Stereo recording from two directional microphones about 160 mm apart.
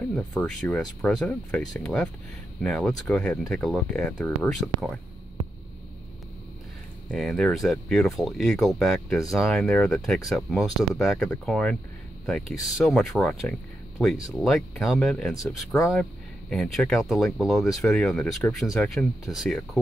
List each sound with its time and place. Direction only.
0.3 s speech: 5° left (ahead or behind)
7.1 s speech: 5° left (ahead or behind)
15.4 s speech: 20° left (ahead or behind)
16.0 s speech: 5° left (ahead or behind)